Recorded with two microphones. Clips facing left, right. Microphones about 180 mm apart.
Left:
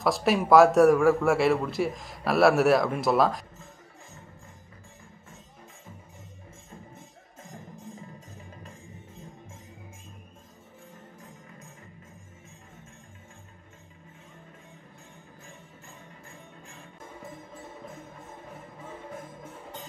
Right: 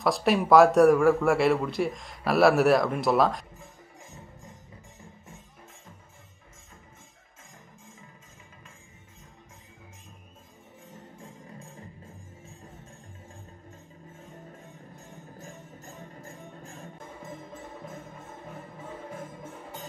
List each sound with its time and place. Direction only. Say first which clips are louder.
0.0 s a man's voice: even; centre (ahead or behind)